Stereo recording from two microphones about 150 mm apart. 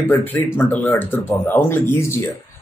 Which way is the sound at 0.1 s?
10° left (ahead or behind).